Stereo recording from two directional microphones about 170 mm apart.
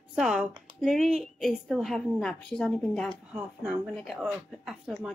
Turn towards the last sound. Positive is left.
turn(degrees=0)  # may be behind; listen again after turning